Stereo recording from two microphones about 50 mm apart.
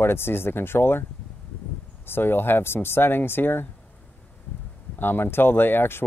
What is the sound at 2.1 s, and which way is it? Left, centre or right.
Speech, left.